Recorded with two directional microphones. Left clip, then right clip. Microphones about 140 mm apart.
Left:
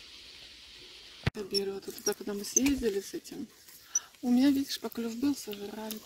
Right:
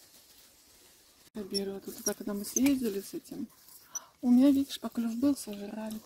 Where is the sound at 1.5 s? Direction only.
85° right.